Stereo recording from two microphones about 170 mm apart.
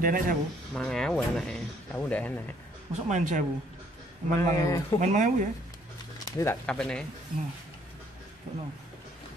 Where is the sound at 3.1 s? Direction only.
45° right (ahead or behind).